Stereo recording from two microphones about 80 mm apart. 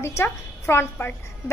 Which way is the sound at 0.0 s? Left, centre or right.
Left.